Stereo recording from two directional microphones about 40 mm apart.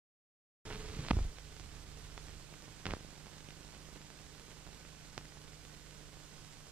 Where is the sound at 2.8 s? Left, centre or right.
Right.